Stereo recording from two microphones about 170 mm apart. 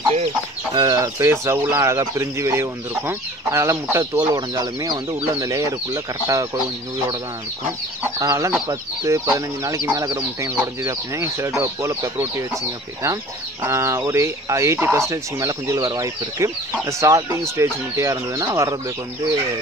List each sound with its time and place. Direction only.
0.7 s speech: 20° right (ahead or behind)
8.0 s chicken: 20° right (ahead or behind)
8.6 s speech: 20° right (ahead or behind)